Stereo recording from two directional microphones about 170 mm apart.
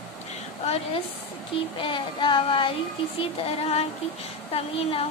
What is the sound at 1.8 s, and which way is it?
Child singing, 30° left (ahead or behind).